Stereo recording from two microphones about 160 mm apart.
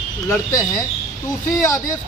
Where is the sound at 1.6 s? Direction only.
20° left (ahead or behind).